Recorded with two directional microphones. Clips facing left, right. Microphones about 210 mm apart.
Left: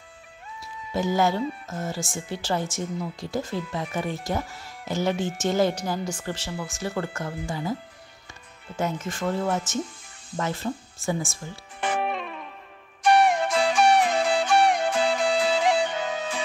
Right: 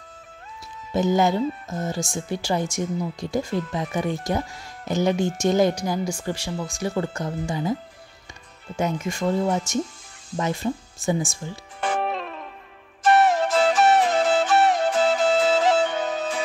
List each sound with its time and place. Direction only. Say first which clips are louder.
0.9 s speech: right 3 dB; 20° right (ahead or behind)
8.7 s speech: right 3 dB; 15° right (ahead or behind)
11.9 s music: right 1 dB; 5° left (ahead or behind)